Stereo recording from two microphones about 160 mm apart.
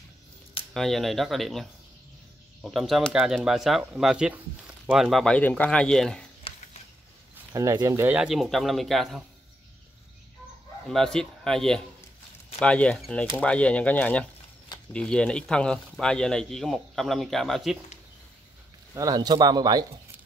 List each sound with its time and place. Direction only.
0.7 s speech: centre (ahead or behind)
6.5 s a sound: 35° left (ahead or behind)
7.5 s speech: 20° right (ahead or behind)
8.2 s speech: centre (ahead or behind)
10.9 s speech: 5° left (ahead or behind)
18.9 s speech: 25° right (ahead or behind)